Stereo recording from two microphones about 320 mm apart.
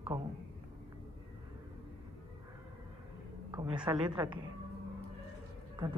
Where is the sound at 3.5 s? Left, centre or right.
Centre.